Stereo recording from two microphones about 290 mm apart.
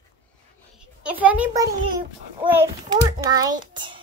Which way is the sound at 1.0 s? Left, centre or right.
Centre.